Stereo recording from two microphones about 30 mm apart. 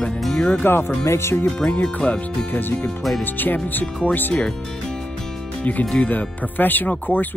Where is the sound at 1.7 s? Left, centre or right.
Left.